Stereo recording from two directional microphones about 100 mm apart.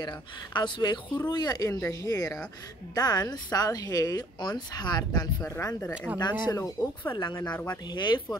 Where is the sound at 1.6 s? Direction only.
20° left (ahead or behind).